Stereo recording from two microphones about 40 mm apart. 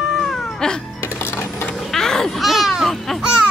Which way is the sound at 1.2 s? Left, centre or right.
Left.